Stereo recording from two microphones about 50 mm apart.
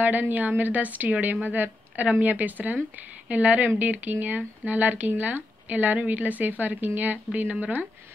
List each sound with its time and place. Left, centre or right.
0.0 s a woman's voice: right